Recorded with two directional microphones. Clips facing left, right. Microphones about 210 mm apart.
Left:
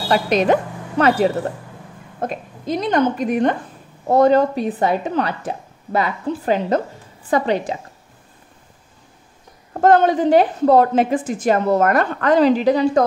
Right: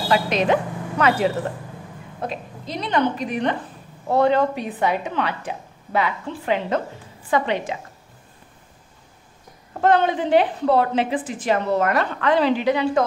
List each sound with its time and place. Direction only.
0.1 s a woman's voice: 45° left (ahead or behind)
9.8 s a woman's voice: 45° left (ahead or behind)